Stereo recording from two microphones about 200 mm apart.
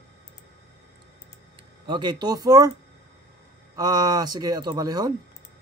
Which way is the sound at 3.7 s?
20° right (ahead or behind).